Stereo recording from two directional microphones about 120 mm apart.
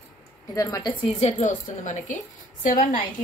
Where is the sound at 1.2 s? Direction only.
70° left (ahead or behind); by 2.2 s 90° left.